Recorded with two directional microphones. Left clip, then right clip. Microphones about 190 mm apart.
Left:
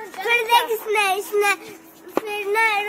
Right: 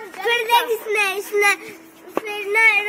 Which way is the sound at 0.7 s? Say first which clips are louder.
Even; 35° left (ahead or behind).